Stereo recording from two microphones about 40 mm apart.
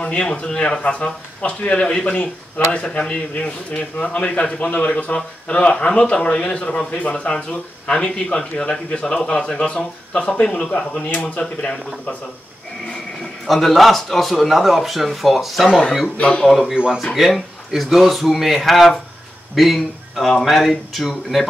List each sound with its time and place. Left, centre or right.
0.0 s speech: left
2.0 s speech: left
13.5 s speech: centre
16.2 s speech: left
16.4 s speech: centre
16.7 s speech: right
17.1 s speech: centre